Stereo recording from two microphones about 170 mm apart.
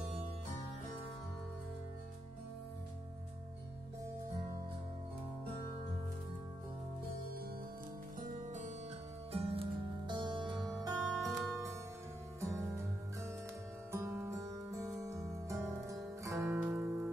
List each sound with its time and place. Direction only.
8.2 s music: 45° right (ahead or behind)
9.3 s music: 35° right (ahead or behind)
11.0 s music: centre (ahead or behind)
12.4 s music: 15° right (ahead or behind)